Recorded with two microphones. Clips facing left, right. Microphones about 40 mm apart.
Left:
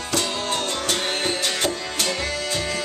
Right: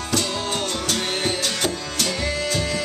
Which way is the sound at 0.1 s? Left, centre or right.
Centre.